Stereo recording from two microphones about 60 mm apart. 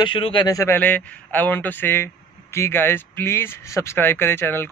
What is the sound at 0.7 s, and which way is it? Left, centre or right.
Speech, left.